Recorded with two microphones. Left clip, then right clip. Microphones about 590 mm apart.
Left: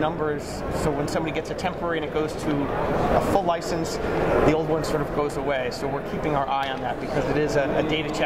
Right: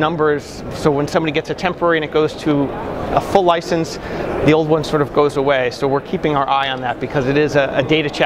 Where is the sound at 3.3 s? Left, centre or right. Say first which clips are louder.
Right 9 dB; right.